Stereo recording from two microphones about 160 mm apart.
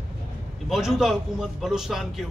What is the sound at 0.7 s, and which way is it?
A man's voice, centre (ahead or behind).